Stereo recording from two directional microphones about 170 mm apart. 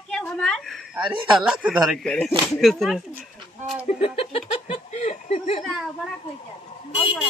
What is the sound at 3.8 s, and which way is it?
Speech, 35° left (ahead or behind).